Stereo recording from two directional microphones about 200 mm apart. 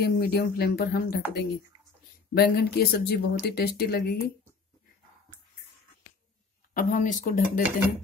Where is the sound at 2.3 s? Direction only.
50° left (ahead or behind).